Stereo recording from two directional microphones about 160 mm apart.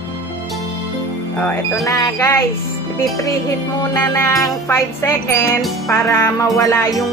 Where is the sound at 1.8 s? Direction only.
20° left (ahead or behind).